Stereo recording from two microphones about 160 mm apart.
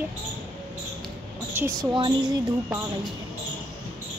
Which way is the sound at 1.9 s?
30° right (ahead or behind).